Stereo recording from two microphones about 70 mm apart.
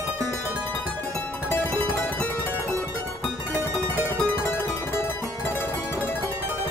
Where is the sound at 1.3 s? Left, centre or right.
Left.